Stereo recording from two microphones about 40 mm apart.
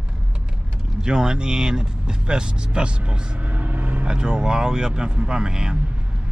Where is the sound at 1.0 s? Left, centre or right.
Centre.